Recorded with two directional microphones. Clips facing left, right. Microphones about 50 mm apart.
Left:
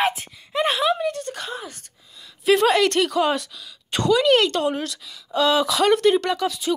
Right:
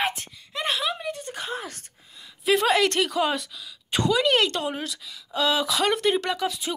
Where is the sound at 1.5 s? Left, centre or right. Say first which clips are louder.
Even; right.